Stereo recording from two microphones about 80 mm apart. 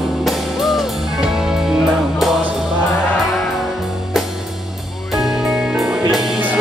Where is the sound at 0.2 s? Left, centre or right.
Centre.